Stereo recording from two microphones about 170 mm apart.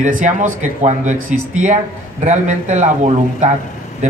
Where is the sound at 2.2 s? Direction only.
45° right (ahead or behind).